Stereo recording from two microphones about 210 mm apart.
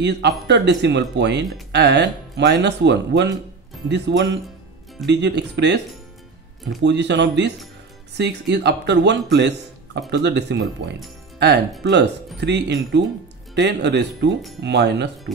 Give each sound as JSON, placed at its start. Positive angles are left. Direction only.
{"t": 0.0, "sound": "speech", "side_deg": -55}
{"t": 6.8, "sound": "speech", "side_deg": -55}